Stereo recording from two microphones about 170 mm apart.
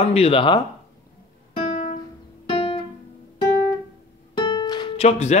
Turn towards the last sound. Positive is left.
turn(degrees=40)  # may be behind; listen again after turning